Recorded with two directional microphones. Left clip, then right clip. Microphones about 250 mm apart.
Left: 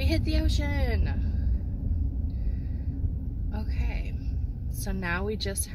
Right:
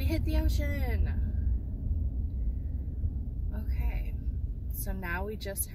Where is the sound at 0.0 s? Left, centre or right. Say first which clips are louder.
Left 5 dB; centre.